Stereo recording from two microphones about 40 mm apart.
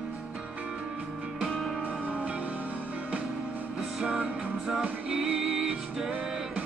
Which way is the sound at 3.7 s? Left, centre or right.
Centre.